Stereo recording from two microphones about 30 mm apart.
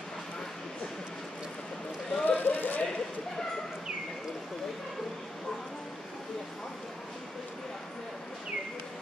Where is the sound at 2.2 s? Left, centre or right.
Left.